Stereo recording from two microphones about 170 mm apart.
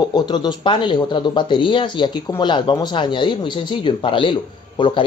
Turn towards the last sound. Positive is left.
turn(degrees=30)  # may be behind; listen again after turning